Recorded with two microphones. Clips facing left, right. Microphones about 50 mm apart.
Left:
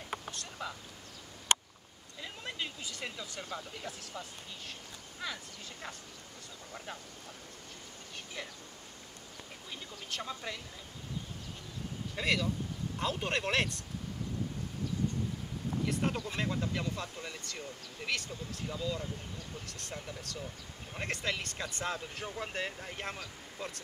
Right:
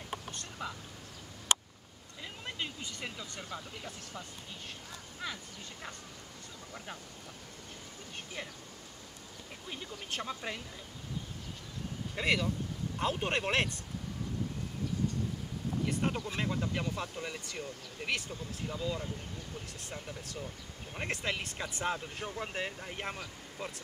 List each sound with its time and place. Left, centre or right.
0.3 s a sound: centre
2.2 s speech: centre
8.4 s speech: centre
9.8 s speech: centre
12.2 s speech: centre
15.8 s speech: centre
16.7 s speech: centre